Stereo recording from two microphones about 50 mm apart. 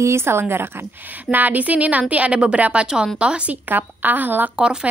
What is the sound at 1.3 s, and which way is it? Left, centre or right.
A woman's voice, right.